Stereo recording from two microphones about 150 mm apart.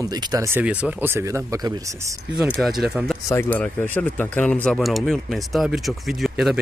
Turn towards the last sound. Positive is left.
turn(degrees=-5)  # may be behind; listen again after turning